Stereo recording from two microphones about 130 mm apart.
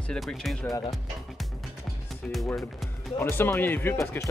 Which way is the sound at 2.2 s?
5° left (ahead or behind).